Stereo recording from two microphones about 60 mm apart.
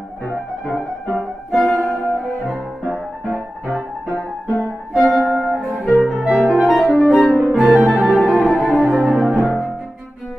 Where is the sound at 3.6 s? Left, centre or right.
Centre.